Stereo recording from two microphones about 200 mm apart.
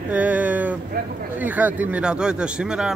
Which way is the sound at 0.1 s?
5° right (ahead or behind).